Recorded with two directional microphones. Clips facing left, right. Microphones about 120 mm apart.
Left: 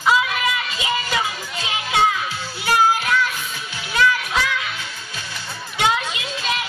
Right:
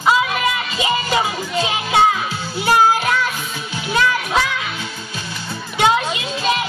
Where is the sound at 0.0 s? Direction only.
30° right (ahead or behind).